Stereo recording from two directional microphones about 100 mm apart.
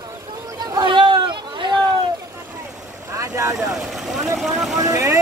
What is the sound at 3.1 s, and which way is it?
Vehicle, 30° right (ahead or behind).